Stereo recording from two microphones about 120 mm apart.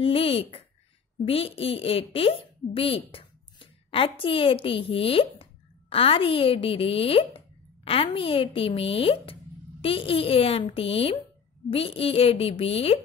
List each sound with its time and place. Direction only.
0.0 s a woman's voice: 50° left (ahead or behind)